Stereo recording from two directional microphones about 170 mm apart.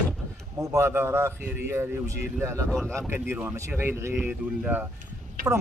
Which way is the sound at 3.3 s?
15° right (ahead or behind).